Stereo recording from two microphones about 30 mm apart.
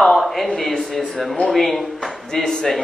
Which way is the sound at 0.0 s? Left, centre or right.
Centre.